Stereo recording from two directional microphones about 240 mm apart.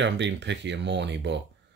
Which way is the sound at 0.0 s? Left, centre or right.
Right.